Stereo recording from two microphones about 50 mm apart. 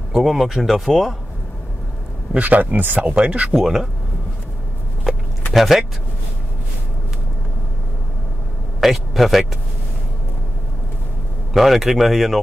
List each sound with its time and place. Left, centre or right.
0.1 s speech: centre
2.3 s a man's voice: right
3.0 s speech: right
3.5 s speech: centre
5.5 s speech: centre
8.8 s a man's voice: centre
11.5 s speech: centre